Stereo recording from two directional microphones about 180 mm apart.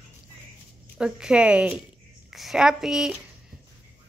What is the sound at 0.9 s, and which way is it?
Speech, 5° right (ahead or behind).